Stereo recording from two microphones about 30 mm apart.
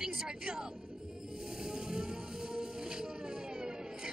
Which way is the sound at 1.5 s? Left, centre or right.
Right.